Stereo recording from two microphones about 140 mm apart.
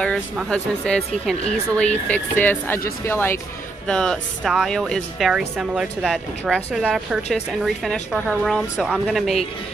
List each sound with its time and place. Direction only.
0.5 s speech: 5° left (ahead or behind)
3.8 s a woman's voice: 5° left (ahead or behind)